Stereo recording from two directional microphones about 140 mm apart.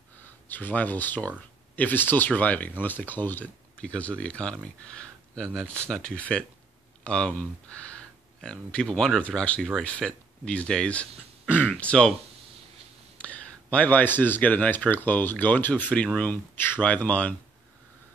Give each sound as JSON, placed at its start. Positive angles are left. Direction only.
{"t": 0.5, "sound": "speech", "side_deg": 10}
{"t": 8.4, "sound": "speech", "side_deg": 5}
{"t": 11.4, "sound": "speech", "side_deg": -10}
{"t": 11.7, "sound": "speech", "side_deg": 5}
{"t": 13.2, "sound": "speech", "side_deg": 10}